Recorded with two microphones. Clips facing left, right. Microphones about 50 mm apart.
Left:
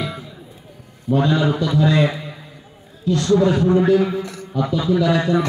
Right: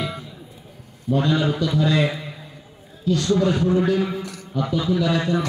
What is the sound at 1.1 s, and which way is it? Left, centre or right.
Speech, left.